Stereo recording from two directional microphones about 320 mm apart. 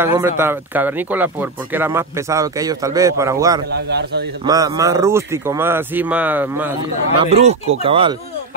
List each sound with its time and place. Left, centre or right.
0.0 s speech: centre
3.7 s a man's voice: right
4.5 s speech: centre
7.2 s speech: centre